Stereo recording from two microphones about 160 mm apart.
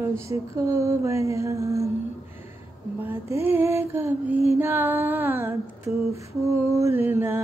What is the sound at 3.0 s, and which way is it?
Music, 10° right (ahead or behind).